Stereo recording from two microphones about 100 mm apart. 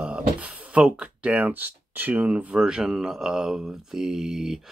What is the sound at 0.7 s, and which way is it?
Speech, 10° right (ahead or behind).